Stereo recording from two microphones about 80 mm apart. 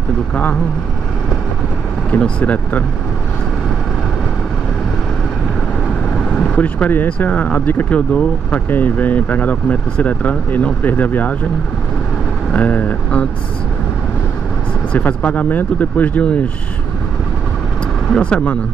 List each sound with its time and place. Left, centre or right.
2.0 s speech: centre
6.4 s speech: centre
12.5 s speech: centre
14.9 s speech: centre
18.1 s speech: centre